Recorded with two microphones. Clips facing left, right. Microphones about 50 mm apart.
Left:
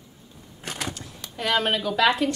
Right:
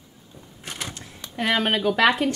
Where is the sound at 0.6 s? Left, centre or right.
Left.